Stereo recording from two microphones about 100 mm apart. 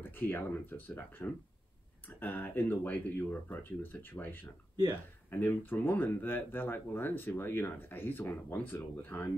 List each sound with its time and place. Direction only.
0.0 s speech: 20° left (ahead or behind)